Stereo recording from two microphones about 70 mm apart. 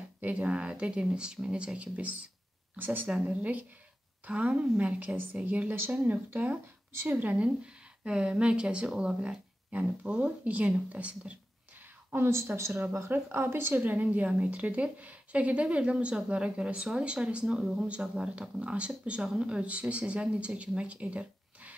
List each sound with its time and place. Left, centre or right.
0.2 s a woman's voice: centre
12.1 s a woman's voice: right; by 21.7 s centre